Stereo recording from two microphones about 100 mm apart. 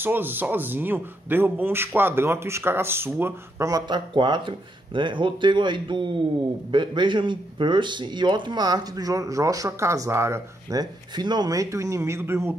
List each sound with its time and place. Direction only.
0.0 s speech: 20° right (ahead or behind)
3.6 s speech: 45° right (ahead or behind); by 10.8 s 25° right (ahead or behind)
10.8 s speech: 45° right (ahead or behind); by 12.5 s 25° right (ahead or behind)